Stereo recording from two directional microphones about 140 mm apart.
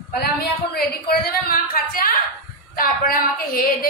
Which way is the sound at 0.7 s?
90° left.